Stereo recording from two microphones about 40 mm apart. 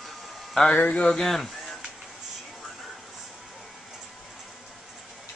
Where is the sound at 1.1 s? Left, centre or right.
Centre.